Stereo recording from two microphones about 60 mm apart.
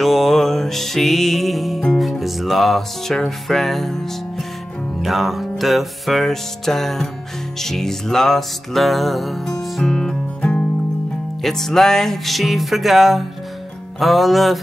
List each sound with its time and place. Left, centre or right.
0.0 s music: centre
10.4 s music: left
11.4 s music: centre